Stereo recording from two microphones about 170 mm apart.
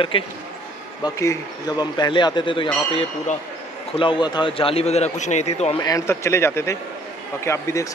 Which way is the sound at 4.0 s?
25° left (ahead or behind).